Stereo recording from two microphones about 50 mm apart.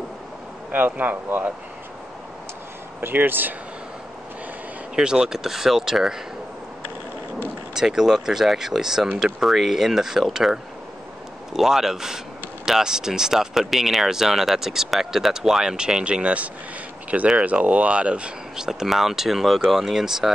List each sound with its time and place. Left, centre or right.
0.7 s speech: right
3.0 s speech: right
4.9 s speech: centre
7.7 s speech: centre
18.7 s speech: centre